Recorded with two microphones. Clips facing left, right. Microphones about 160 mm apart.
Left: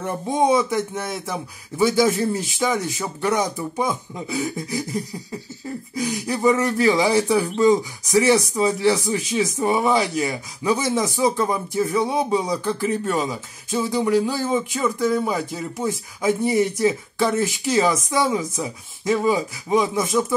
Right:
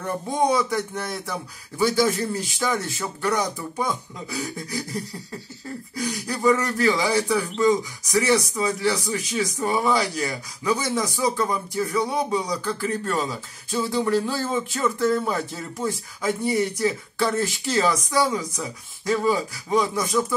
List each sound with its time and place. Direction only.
0.0 s speech: 20° left (ahead or behind)
5.9 s speech: 20° left (ahead or behind)